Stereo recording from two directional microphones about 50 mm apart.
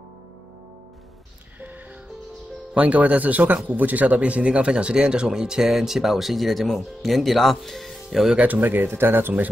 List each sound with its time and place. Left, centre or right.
2.7 s speech: right; by 8.3 s centre
8.4 s speech: right